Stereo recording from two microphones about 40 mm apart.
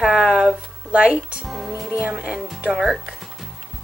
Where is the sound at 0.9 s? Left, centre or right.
Right.